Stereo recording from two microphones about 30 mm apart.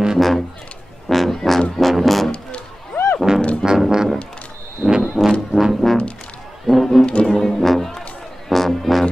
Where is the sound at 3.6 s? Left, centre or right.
Centre.